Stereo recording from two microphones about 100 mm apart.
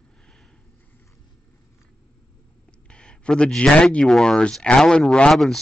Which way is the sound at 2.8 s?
10° left (ahead or behind).